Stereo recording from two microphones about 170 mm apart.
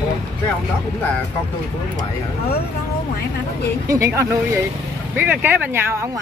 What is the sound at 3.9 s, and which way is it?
Speech, 15° right (ahead or behind).